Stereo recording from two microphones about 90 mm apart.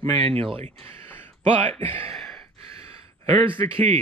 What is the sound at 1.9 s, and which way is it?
Speech, 90° right.